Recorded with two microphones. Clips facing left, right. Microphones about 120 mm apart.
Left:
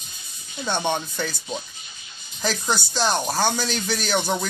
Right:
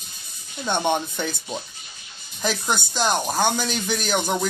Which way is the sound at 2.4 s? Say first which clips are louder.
Even; centre (ahead or behind).